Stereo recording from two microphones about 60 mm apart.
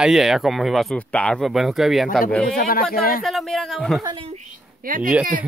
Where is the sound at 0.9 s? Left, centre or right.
Left.